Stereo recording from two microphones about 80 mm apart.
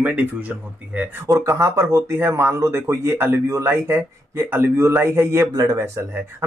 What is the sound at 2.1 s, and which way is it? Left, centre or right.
A man's voice, right.